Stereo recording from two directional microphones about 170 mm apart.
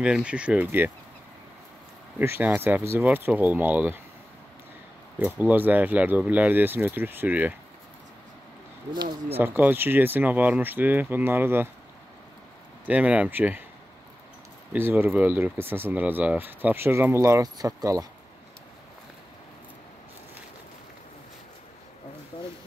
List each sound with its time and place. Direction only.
0.0 s speech: 5° right (ahead or behind)
2.1 s speech: 10° right (ahead or behind)
5.2 s speech: 10° right (ahead or behind)
8.9 s speech: 25° right (ahead or behind)
9.4 s speech: 10° right (ahead or behind)
12.8 s speech: 10° right (ahead or behind)
14.7 s speech: 10° right (ahead or behind)
22.3 s a sound: 30° left (ahead or behind)